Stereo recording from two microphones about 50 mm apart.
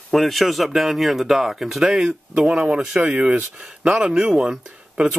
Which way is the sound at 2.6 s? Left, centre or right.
Centre.